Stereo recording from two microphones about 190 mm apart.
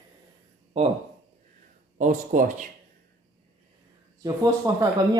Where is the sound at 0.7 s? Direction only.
35° right (ahead or behind).